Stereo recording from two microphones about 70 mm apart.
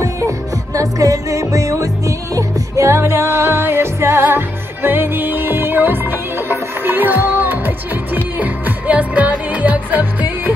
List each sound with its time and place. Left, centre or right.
0.7 s music: right